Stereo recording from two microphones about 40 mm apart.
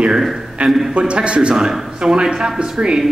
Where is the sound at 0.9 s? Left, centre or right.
Right.